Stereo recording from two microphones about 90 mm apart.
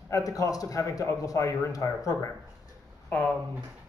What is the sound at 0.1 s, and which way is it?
A man's voice, 40° left (ahead or behind).